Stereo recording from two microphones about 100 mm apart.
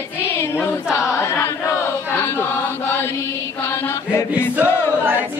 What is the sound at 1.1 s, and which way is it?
Chant, 25° left (ahead or behind).